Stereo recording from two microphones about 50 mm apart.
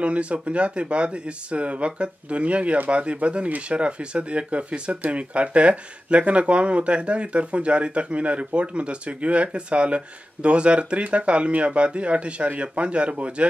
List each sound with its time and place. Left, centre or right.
0.0 s speech: right